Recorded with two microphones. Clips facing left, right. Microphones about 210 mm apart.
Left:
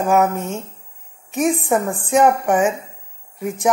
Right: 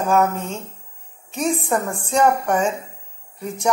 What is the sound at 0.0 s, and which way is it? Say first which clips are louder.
Speech: left 2 dB; 15° left (ahead or behind).